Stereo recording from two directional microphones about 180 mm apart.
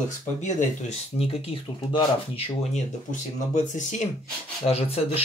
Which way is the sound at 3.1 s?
45° left (ahead or behind).